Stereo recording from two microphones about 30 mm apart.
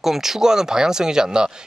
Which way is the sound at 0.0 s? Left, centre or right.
Centre.